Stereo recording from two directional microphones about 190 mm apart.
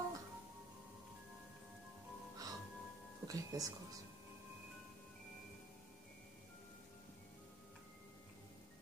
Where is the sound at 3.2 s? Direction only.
20° right (ahead or behind).